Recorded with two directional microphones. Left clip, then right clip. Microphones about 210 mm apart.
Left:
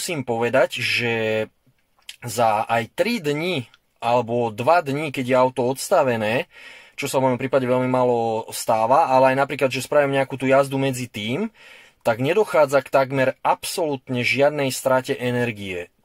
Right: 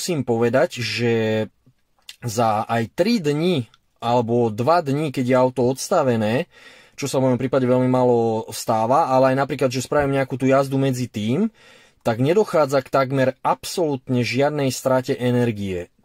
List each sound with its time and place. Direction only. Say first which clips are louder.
0.1 s speech: right 1 dB; 35° right (ahead or behind)